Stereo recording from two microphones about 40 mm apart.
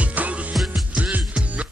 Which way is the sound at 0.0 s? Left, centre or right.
Right.